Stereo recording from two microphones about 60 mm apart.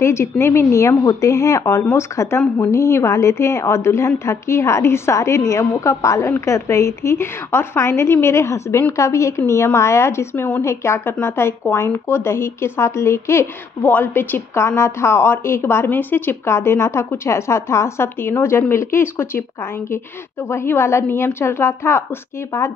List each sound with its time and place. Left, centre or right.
0.0 s a woman's voice: left
10.6 s a woman's voice: left
13.8 s a woman's voice: left
16.4 s a woman's voice: left
20.4 s a woman's voice: left